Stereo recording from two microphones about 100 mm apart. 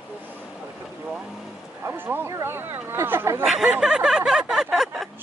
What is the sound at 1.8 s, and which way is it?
Speech, 20° right (ahead or behind).